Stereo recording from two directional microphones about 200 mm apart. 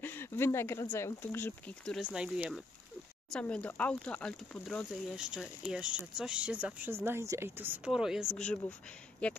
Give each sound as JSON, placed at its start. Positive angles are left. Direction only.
{"t": 0.0, "sound": "speech", "side_deg": 10}
{"t": 2.1, "sound": "speech", "side_deg": -5}